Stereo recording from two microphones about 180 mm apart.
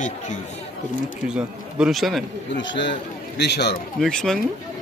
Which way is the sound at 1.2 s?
5° right (ahead or behind).